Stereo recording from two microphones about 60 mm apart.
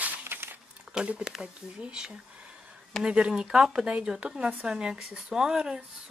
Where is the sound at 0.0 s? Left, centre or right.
Right.